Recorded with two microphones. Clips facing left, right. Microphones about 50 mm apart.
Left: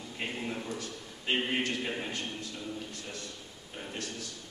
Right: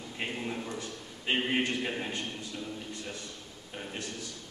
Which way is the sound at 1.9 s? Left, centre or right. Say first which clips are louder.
Right 1 dB; centre.